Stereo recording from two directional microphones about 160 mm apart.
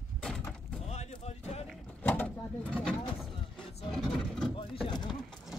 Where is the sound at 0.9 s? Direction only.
45° left (ahead or behind).